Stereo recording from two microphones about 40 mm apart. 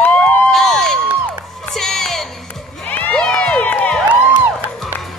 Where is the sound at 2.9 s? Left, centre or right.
Left.